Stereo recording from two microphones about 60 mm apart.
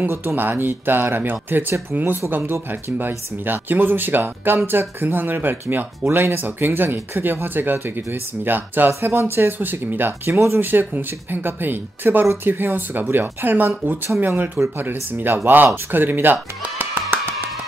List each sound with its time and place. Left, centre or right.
0.1 s speech: right
0.4 s speech: right